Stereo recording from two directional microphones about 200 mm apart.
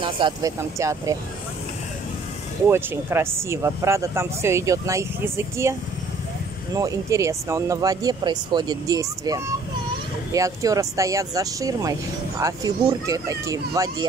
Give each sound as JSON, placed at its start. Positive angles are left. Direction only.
{"t": 0.0, "sound": "speech", "side_deg": -20}
{"t": 2.7, "sound": "speech", "side_deg": -10}